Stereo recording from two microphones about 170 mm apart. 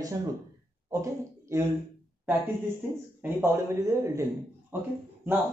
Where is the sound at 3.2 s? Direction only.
15° right (ahead or behind).